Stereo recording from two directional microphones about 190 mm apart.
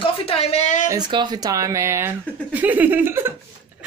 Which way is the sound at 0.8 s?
20° right (ahead or behind).